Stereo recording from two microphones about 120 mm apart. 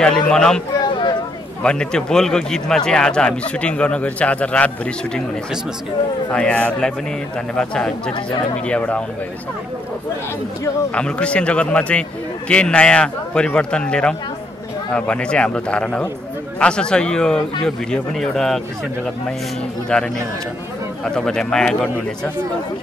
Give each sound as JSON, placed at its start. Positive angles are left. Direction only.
{"t": 0.0, "sound": "a man's voice", "side_deg": 5}
{"t": 0.7, "sound": "a sound", "side_deg": 40}
{"t": 1.6, "sound": "speech", "side_deg": 5}
{"t": 6.3, "sound": "speech", "side_deg": 10}
{"t": 11.0, "sound": "speech", "side_deg": 10}
{"t": 19.9, "sound": "a man's voice", "side_deg": 10}